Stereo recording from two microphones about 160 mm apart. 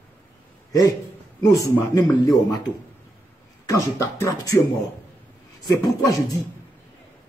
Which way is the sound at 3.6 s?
20° left (ahead or behind).